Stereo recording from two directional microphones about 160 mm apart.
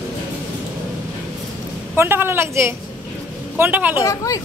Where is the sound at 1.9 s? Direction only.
15° right (ahead or behind).